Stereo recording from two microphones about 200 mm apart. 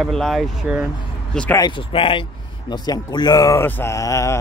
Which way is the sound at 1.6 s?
25° left (ahead or behind).